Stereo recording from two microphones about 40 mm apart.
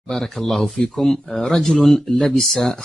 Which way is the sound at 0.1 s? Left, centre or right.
Centre.